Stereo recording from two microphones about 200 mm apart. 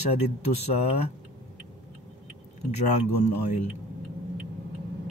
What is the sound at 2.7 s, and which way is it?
Speech, 35° left (ahead or behind).